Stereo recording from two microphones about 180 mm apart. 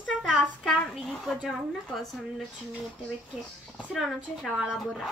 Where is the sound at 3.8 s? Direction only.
Centre (ahead or behind).